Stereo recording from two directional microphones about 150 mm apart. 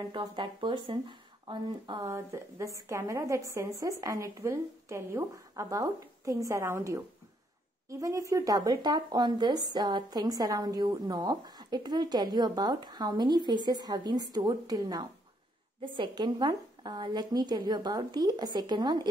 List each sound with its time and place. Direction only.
0.1 s speech: 30° right (ahead or behind)